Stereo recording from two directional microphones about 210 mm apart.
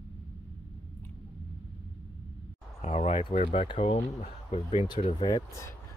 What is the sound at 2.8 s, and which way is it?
Speech, 30° left (ahead or behind).